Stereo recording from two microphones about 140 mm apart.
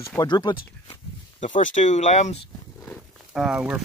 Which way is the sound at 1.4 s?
65° left (ahead or behind).